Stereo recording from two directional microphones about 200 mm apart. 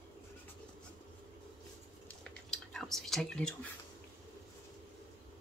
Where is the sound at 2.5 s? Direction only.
Centre (ahead or behind).